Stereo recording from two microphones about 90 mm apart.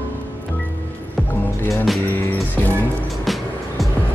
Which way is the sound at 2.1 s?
20° left (ahead or behind).